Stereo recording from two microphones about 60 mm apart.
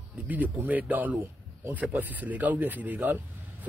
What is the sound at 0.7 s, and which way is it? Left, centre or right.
Speech, right.